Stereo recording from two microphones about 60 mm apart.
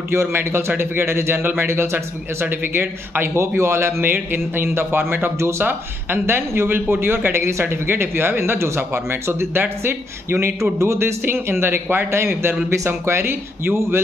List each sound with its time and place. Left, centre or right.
0.1 s speech: right
3.3 s speech: right